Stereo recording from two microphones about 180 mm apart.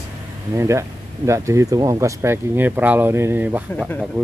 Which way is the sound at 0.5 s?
15° right (ahead or behind).